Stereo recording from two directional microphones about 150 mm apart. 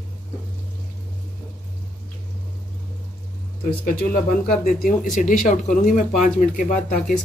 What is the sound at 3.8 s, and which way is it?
Speech, 65° left (ahead or behind).